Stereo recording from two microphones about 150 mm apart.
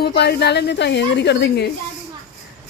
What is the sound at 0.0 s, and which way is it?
Speech, 90° left.